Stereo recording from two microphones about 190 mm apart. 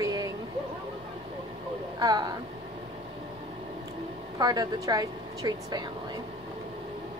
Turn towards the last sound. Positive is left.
turn(degrees=-20)  # may be behind; listen again after turning